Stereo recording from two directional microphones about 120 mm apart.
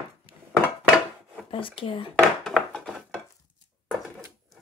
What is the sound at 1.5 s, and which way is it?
Speech, 45° left (ahead or behind).